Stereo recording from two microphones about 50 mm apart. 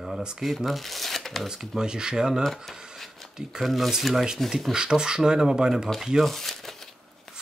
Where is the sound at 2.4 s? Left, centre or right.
Centre.